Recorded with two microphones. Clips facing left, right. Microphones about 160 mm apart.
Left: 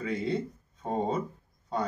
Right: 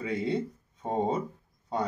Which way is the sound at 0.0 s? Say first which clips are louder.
Right 1 dB; 20° right (ahead or behind).